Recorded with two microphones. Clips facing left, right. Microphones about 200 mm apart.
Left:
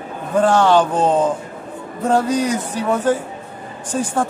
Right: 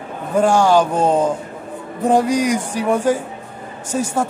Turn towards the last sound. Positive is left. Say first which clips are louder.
# even
turn(degrees=-10)  # may be behind; listen again after turning